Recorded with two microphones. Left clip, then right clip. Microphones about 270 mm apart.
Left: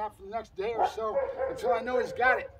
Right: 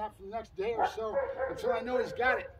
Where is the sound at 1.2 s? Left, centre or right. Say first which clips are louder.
Left 1 dB; left.